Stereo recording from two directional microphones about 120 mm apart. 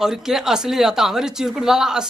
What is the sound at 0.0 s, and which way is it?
Speech, 5° right (ahead or behind).